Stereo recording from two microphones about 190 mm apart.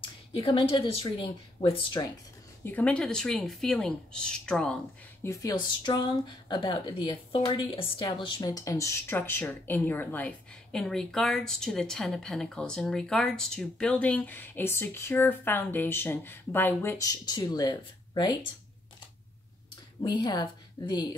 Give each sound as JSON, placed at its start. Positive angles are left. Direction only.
{"t": 0.4, "sound": "a woman's voice", "side_deg": 25}
{"t": 2.6, "sound": "speech", "side_deg": 5}
{"t": 5.2, "sound": "speech", "side_deg": 15}
{"t": 20.0, "sound": "a woman's voice", "side_deg": 25}